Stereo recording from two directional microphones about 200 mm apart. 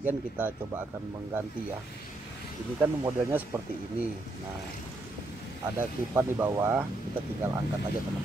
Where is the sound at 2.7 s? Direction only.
10° right (ahead or behind).